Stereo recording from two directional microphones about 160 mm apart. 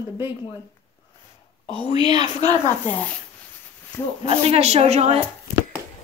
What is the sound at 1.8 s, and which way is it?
Speech, 25° right (ahead or behind).